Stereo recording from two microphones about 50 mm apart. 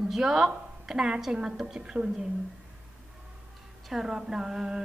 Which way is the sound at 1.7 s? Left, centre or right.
Centre.